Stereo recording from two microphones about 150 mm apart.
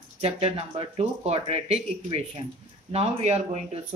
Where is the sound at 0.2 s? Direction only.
40° right (ahead or behind).